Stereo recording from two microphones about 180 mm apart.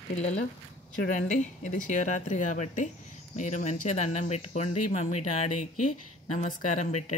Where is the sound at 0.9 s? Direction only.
45° left (ahead or behind).